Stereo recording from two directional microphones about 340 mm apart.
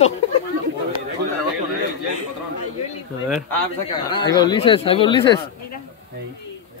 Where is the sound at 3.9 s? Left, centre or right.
Centre.